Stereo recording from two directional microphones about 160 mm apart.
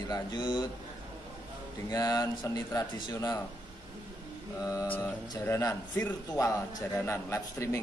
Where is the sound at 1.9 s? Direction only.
25° left (ahead or behind).